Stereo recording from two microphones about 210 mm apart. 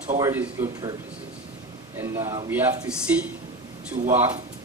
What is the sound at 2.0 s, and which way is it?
A man's voice, 15° right (ahead or behind).